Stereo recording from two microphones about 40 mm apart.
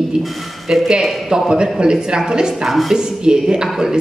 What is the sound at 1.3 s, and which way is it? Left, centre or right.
A woman's voice, centre.